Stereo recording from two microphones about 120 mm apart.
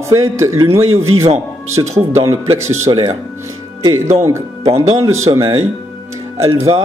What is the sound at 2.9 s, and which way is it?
Speech, 45° right (ahead or behind).